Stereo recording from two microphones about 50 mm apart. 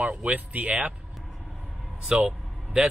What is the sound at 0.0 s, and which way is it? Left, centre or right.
Speech, right.